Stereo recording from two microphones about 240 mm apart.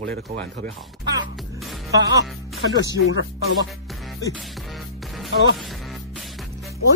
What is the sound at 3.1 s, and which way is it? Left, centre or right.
Music, left.